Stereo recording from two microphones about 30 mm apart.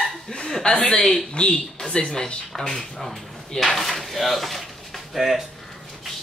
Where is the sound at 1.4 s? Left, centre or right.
Left.